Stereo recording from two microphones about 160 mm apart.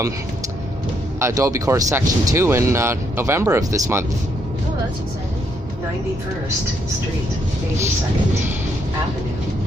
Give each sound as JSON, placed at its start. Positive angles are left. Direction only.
{"t": 1.2, "sound": "speech", "side_deg": -20}